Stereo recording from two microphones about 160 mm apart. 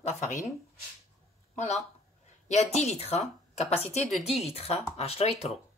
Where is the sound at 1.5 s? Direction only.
45° left (ahead or behind).